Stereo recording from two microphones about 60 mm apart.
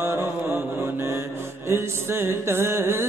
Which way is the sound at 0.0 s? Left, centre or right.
Right.